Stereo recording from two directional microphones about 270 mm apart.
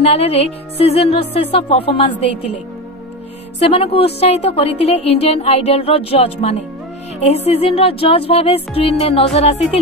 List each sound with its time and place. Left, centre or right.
0.0 s a woman's voice: left
3.5 s a woman's voice: left